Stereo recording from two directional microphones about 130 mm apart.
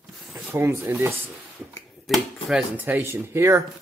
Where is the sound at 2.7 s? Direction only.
15° right (ahead or behind).